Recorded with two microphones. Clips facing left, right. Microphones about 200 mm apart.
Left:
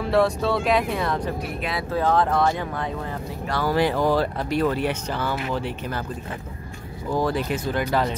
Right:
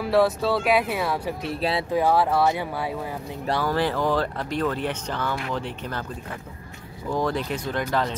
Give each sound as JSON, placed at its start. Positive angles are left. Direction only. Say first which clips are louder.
{"t": 0.0, "sound": "speech", "louder": "even", "side_deg": -5}
{"t": 1.4, "sound": "speech", "louder": "right 3 dB", "side_deg": -30}
{"t": 1.9, "sound": "speech", "louder": "left 1 dB", "side_deg": -10}
{"t": 3.6, "sound": "speech", "louder": "left 4 dB", "side_deg": 15}
{"t": 7.1, "sound": "speech", "louder": "left 2 dB", "side_deg": 5}